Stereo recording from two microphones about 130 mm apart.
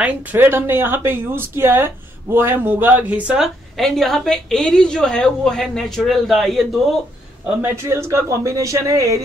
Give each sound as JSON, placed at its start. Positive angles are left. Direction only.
{"t": 0.0, "sound": "a woman's voice", "side_deg": -10}
{"t": 7.4, "sound": "speech", "side_deg": -20}